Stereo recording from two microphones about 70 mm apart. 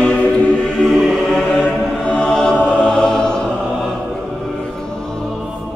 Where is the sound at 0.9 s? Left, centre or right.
Centre.